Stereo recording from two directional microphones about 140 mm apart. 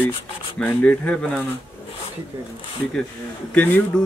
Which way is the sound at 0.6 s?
10° left (ahead or behind).